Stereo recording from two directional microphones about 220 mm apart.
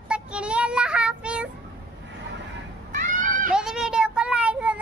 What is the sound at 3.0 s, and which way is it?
Children playing, 40° right (ahead or behind).